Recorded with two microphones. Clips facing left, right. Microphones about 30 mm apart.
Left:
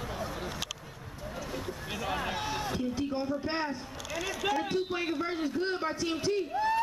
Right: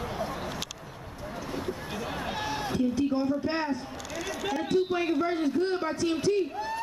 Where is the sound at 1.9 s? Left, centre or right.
Centre.